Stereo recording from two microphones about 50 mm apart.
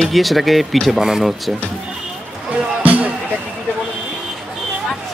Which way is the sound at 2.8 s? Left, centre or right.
Right.